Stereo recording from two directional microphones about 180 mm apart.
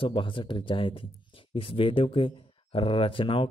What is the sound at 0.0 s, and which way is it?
Speech, 30° left (ahead or behind).